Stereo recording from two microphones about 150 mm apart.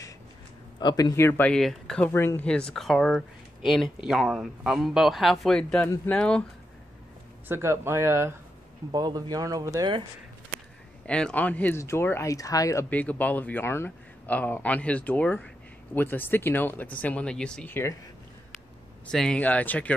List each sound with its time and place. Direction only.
0.7 s speech: 30° left (ahead or behind)
1.1 s a man's voice: 15° left (ahead or behind)
1.5 s a man's voice: 5° left (ahead or behind)
7.4 s speech: 15° right (ahead or behind)
11.1 s a man's voice: 5° left (ahead or behind); by 12.8 s 20° left (ahead or behind)
12.9 s a man's voice: 10° left (ahead or behind)
19.0 s a man's voice: 5° left (ahead or behind)